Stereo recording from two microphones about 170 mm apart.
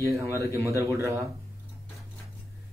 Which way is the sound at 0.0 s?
15° right (ahead or behind).